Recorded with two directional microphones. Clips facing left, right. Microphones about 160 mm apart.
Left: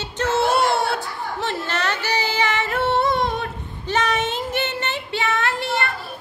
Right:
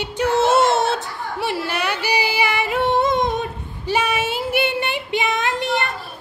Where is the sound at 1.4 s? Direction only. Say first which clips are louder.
Right 2 dB; 10° right (ahead or behind).